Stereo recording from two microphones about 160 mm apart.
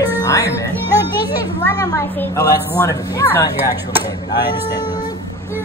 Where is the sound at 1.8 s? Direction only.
25° left (ahead or behind).